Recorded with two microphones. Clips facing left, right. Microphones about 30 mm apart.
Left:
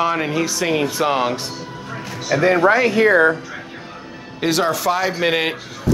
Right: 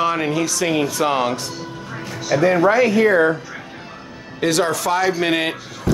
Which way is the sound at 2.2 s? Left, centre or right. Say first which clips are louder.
Left 1 dB; left.